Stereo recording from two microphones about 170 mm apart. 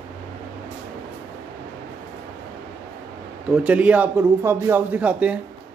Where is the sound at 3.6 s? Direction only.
10° right (ahead or behind).